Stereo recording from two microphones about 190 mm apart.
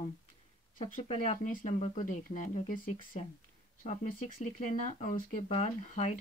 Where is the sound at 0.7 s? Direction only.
45° left (ahead or behind).